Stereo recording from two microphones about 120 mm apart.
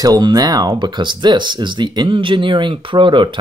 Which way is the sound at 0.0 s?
35° right (ahead or behind).